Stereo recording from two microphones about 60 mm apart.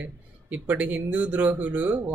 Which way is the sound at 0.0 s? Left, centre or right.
Right.